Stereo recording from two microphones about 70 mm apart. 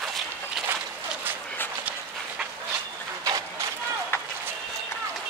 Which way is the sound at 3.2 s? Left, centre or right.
Right.